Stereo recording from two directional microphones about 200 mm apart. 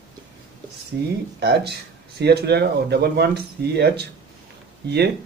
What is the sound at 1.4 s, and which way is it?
Speech, 55° right (ahead or behind).